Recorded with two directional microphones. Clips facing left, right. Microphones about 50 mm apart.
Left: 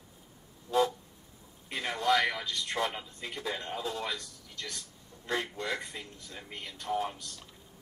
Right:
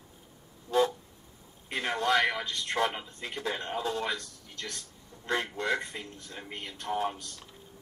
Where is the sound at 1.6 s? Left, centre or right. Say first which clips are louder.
Right 1 dB; right.